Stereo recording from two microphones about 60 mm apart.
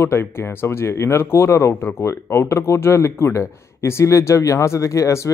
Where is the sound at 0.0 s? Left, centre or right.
Left.